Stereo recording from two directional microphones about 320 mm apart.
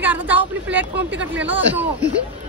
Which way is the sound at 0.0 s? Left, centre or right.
Centre.